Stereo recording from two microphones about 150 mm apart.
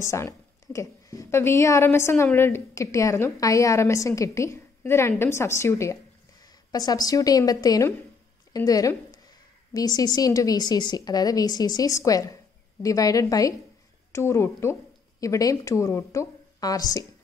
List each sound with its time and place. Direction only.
0.0 s a woman's voice: 20° left (ahead or behind)